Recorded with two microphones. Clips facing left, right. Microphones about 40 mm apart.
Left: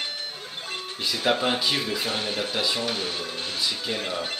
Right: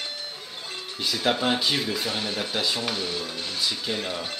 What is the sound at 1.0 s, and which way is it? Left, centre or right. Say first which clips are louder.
Speech: even; centre.